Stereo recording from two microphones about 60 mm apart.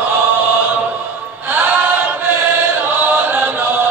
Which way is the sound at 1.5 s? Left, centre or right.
Right.